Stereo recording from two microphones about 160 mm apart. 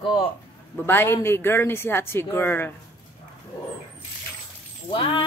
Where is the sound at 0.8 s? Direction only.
15° left (ahead or behind).